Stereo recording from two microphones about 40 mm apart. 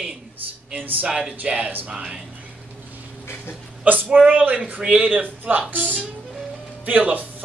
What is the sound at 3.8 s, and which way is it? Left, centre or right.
Speech, right.